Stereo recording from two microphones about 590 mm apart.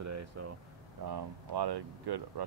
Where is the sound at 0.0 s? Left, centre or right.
Right.